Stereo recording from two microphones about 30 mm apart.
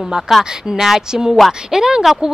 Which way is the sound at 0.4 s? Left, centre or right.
Centre.